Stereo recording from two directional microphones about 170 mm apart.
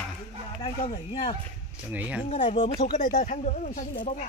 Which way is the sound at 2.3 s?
35° left (ahead or behind).